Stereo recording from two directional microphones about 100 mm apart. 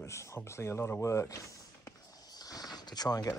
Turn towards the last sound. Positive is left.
turn(degrees=40)  # may be behind; listen again after turning